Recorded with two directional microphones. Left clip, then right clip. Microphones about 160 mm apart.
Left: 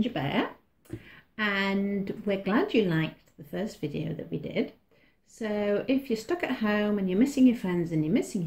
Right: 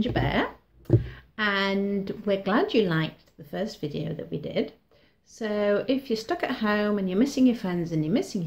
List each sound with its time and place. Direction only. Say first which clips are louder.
0.1 s speech: right 3 dB; 10° left (ahead or behind)